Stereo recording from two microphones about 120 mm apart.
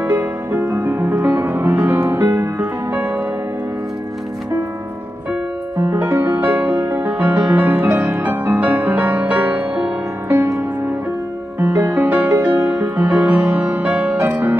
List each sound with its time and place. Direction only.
0.0 s music: 15° right (ahead or behind)
5.8 s music: 20° right (ahead or behind)
11.6 s music: 15° right (ahead or behind)